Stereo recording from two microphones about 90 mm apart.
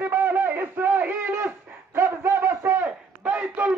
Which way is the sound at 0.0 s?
20° right (ahead or behind).